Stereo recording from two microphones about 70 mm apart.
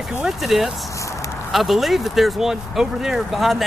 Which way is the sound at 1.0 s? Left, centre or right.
Left.